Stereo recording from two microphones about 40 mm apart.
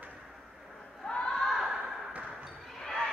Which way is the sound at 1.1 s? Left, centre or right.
Left.